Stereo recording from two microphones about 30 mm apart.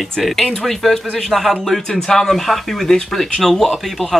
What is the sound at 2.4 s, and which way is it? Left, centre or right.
Speech, centre.